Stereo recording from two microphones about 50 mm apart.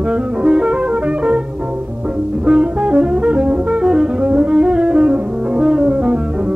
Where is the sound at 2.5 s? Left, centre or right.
Right.